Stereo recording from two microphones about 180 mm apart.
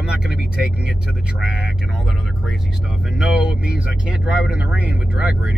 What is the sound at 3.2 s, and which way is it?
Speech, 5° right (ahead or behind).